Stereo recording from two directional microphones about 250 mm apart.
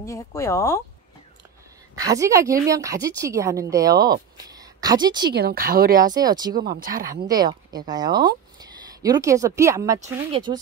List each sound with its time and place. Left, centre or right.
0.0 s speech: centre
2.0 s a woman's voice: centre
5.3 s speech: right
6.0 s a woman's voice: centre
6.5 s speech: right
7.2 s a woman's voice: centre